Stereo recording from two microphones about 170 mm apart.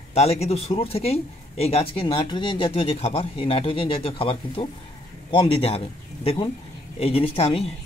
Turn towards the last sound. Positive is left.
turn(degrees=35)  # may be behind; listen again after turning